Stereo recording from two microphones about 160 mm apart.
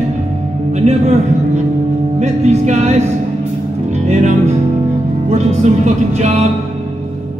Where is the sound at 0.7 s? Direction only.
45° right (ahead or behind).